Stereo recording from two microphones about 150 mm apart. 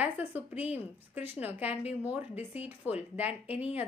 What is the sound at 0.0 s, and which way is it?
A woman's voice, 10° right (ahead or behind).